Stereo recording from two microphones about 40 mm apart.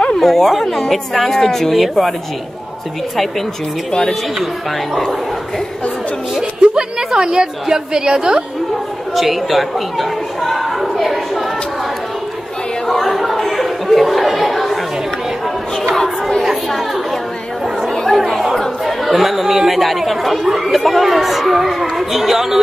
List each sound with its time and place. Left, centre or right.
0.2 s speech: centre
6.6 s a woman's voice: centre
9.1 s speech: centre
12.8 s a sound: centre
13.5 s chatter: centre
16.0 s chatter: centre
16.4 s speech: centre
18.3 s chatter: centre
19.0 s speech: centre